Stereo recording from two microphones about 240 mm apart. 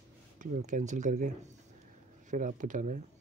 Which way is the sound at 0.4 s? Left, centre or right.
Right.